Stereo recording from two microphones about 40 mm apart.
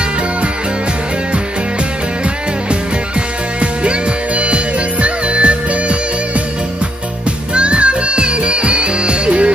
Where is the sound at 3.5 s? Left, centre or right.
Right.